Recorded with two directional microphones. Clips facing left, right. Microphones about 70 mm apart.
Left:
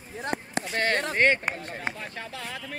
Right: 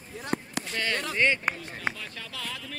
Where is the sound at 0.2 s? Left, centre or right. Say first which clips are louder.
Left 2 dB; left.